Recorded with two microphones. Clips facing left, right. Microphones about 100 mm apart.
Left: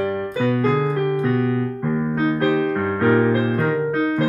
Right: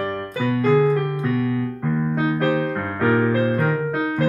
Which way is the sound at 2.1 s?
20° right (ahead or behind).